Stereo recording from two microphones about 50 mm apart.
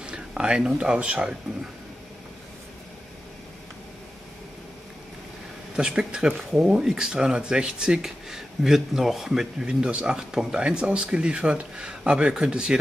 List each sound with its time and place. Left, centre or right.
0.0 s speech: centre
5.8 s speech: centre